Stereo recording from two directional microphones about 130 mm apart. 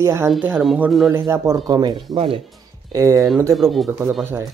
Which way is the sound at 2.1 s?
45° right (ahead or behind).